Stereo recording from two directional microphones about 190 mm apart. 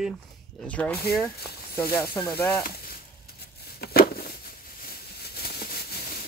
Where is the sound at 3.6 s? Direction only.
55° left (ahead or behind).